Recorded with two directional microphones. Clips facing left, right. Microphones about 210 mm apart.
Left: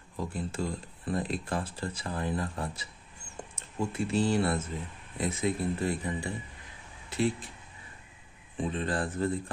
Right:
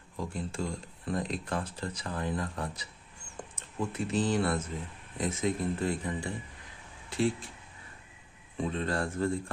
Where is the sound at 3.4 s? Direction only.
10° left (ahead or behind).